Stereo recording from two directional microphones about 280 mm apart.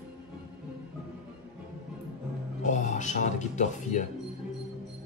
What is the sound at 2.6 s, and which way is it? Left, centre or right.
Music, left.